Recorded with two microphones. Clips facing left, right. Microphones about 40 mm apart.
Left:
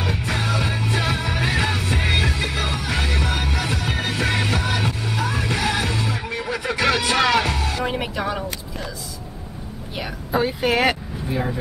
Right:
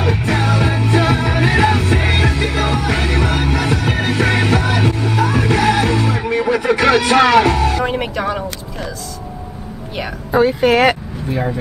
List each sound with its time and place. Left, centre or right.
0.3 s music: right
5.2 s music: right
7.9 s a sound: centre
9.9 s speech: centre
11.3 s speech: centre